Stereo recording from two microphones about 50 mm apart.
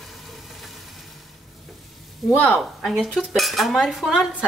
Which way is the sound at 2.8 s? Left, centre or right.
Centre.